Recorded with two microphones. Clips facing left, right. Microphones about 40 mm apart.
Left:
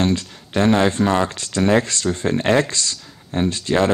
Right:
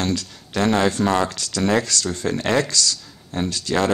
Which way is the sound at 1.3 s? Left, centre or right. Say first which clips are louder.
Left 3 dB; left.